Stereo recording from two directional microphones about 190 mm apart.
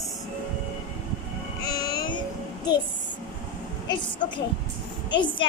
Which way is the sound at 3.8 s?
25° left (ahead or behind).